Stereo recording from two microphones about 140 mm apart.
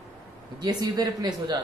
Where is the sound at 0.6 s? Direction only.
30° right (ahead or behind).